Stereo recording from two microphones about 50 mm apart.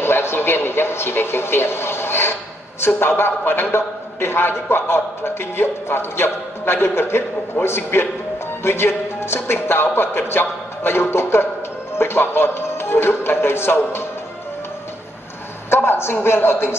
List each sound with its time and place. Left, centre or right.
0.0 s a man's voice: left
15.7 s a man's voice: left